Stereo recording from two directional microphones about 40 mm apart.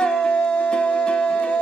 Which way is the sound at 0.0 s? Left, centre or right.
Left.